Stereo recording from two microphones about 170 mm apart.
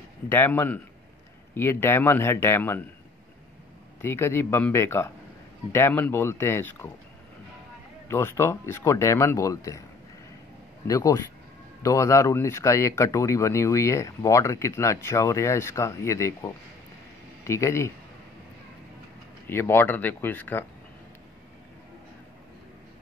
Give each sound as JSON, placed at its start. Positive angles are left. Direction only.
{"t": 0.3, "sound": "speech", "side_deg": 10}
{"t": 4.0, "sound": "speech", "side_deg": 15}
{"t": 8.1, "sound": "speech", "side_deg": 15}
{"t": 10.9, "sound": "speech", "side_deg": 20}
{"t": 19.4, "sound": "speech", "side_deg": 15}